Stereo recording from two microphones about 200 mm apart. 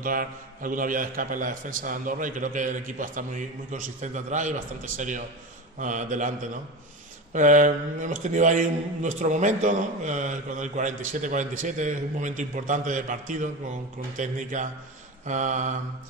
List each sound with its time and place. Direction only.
0.0 s speech: 45° right (ahead or behind)
7.3 s speech: 40° right (ahead or behind)